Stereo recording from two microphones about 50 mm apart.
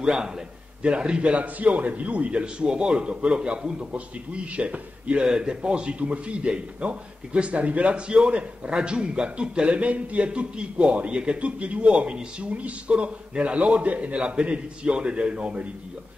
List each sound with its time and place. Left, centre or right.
0.0 s a man's voice: centre